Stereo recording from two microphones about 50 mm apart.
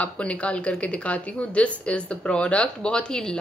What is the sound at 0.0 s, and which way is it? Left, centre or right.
Speech, left.